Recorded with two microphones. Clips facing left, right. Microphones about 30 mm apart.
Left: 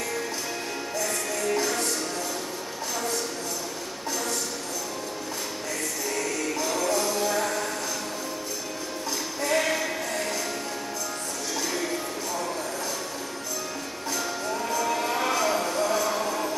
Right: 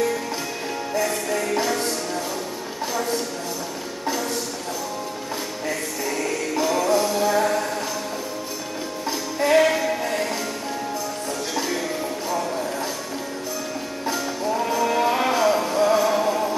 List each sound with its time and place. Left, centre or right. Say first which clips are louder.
0.9 s music: right 7 dB; right
6.6 s music: right 7 dB; right
9.4 s music: right 9 dB; right
14.7 s music: right 5 dB; right
15.8 s train: right 9 dB; right